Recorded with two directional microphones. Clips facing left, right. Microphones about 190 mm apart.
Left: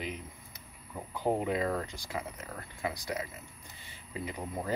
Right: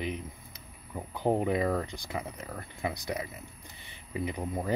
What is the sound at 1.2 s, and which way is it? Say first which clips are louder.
Speech: right 3 dB; 20° right (ahead or behind).